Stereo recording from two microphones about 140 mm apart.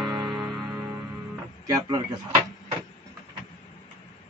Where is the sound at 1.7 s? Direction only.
30° right (ahead or behind).